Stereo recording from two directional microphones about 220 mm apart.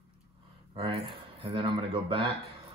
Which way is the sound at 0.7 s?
25° right (ahead or behind).